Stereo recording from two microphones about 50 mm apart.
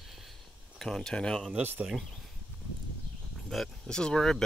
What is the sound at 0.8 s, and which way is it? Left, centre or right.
Speech, centre.